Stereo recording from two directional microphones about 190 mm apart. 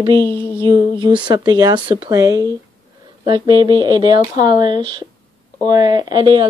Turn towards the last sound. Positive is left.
turn(degrees=-25)  # may be behind; listen again after turning